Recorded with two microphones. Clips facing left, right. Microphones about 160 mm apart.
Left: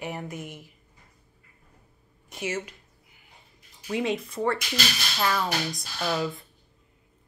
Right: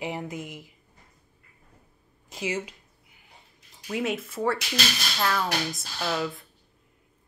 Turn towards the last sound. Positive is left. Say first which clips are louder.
# left 1 dB
turn(degrees=0)  # may be behind; listen again after turning